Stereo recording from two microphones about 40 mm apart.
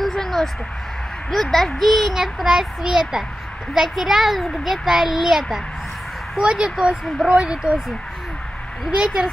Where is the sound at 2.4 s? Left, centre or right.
Centre.